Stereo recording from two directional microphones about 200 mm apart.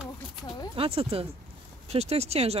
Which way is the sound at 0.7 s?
25° right (ahead or behind).